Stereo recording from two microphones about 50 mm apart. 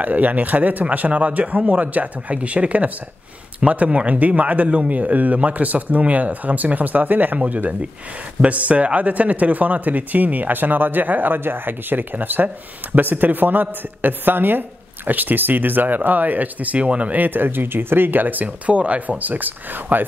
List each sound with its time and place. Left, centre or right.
0.0 s speech: right